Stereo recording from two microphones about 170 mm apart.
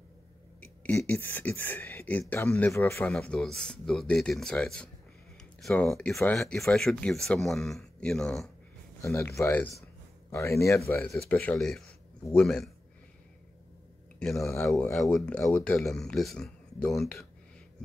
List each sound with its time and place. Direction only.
0.6 s speech: 10° left (ahead or behind)
3.1 s speech: 5° left (ahead or behind)
9.0 s speech: 15° left (ahead or behind)
11.1 s speech: 5° left (ahead or behind)
14.2 s speech: centre (ahead or behind)